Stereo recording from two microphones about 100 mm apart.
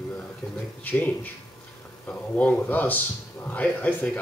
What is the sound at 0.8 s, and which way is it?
Speech, 15° left (ahead or behind).